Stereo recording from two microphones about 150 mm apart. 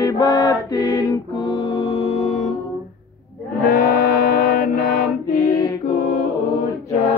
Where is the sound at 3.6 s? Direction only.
75° left (ahead or behind).